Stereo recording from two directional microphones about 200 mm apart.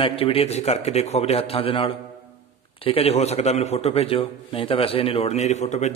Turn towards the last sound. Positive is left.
turn(degrees=35)  # may be behind; listen again after turning